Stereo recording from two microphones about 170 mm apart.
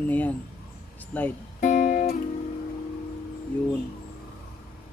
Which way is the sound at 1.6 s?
45° left (ahead or behind).